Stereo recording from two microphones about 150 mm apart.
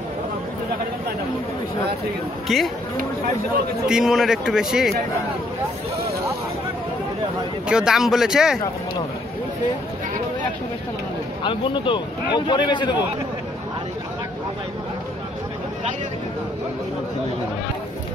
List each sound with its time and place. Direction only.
2.4 s a man's voice: centre (ahead or behind)
3.8 s a man's voice: 5° right (ahead or behind)
7.6 s a man's voice: 5° right (ahead or behind)
11.4 s a man's voice: 35° left (ahead or behind)